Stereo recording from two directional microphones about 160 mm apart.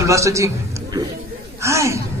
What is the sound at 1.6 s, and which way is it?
Speech, 20° right (ahead or behind).